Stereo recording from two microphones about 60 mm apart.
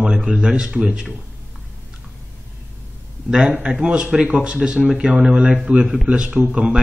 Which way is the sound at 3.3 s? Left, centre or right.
Centre.